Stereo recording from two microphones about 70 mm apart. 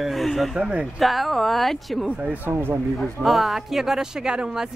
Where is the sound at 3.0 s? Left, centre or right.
Centre.